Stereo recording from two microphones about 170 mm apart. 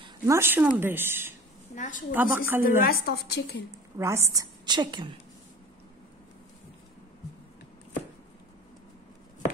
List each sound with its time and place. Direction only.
0.2 s a woman's voice: 15° right (ahead or behind)
1.8 s a woman's voice: 50° left (ahead or behind)
2.1 s a woman's voice: 10° right (ahead or behind)
2.8 s a woman's voice: 65° left (ahead or behind)
4.0 s a woman's voice: 15° right (ahead or behind)